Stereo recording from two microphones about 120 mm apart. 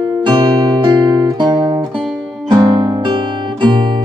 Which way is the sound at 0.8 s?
40° right (ahead or behind).